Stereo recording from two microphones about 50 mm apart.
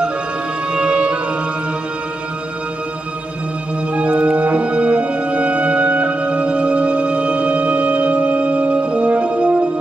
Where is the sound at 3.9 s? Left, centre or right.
Right.